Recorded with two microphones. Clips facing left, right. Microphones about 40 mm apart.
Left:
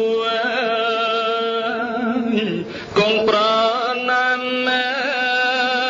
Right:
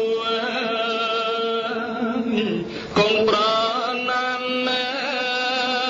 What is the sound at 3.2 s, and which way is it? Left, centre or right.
Mantra, centre.